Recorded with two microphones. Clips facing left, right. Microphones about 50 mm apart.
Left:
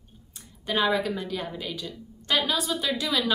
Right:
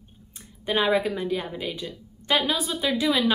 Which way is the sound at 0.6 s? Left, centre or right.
Right.